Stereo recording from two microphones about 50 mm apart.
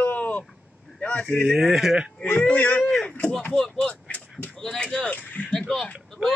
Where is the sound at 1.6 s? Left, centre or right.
Centre.